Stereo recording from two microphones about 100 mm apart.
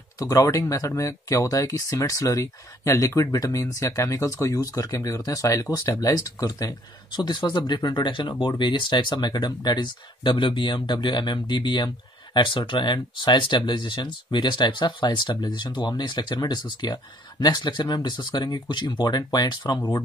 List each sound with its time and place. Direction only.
0.2 s speech: 35° left (ahead or behind)